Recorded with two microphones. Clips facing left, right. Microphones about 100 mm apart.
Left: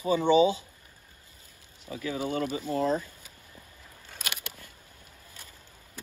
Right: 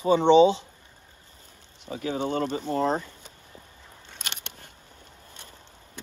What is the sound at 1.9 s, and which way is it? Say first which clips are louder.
Speech: right 3 dB; 35° right (ahead or behind).